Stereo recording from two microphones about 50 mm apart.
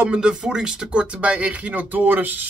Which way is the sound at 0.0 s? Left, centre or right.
Centre.